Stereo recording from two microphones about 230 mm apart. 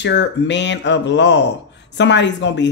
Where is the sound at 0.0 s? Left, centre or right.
Left.